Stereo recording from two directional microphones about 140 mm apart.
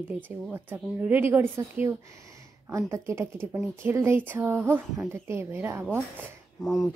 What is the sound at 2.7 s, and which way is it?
A woman's voice, 20° right (ahead or behind).